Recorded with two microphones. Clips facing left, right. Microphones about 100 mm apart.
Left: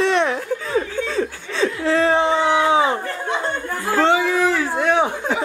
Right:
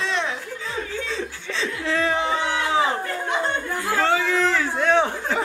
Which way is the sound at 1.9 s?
35° left (ahead or behind).